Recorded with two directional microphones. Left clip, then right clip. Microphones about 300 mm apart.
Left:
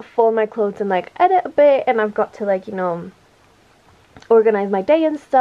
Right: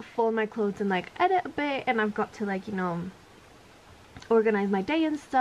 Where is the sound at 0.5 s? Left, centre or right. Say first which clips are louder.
Left 9 dB; centre.